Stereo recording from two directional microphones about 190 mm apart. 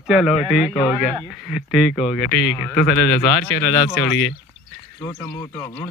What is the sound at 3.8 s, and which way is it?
Speech, 10° left (ahead or behind).